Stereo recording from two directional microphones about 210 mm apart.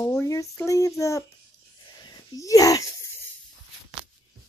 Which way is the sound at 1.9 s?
20° left (ahead or behind).